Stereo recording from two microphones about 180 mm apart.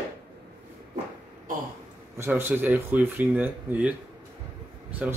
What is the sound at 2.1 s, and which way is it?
Speech, 15° right (ahead or behind).